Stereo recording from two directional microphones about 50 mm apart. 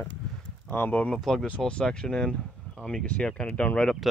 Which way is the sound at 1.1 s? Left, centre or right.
Centre.